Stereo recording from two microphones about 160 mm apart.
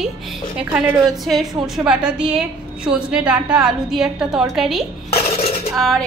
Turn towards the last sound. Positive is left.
turn(degrees=0)  # may be behind; listen again after turning